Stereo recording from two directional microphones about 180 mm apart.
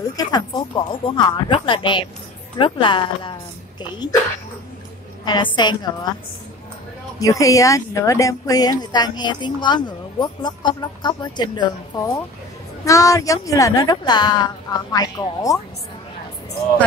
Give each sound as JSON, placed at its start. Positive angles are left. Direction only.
{"t": 0.2, "sound": "speech", "side_deg": 20}
{"t": 5.2, "sound": "speech", "side_deg": 25}
{"t": 7.2, "sound": "speech", "side_deg": 20}